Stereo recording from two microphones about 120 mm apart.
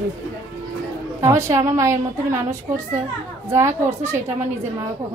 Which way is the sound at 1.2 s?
25° right (ahead or behind).